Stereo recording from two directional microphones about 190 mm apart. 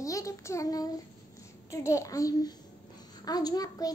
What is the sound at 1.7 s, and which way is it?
A child's voice, 15° left (ahead or behind).